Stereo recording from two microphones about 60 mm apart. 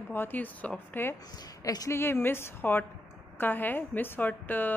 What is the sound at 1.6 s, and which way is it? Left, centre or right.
Speech, left.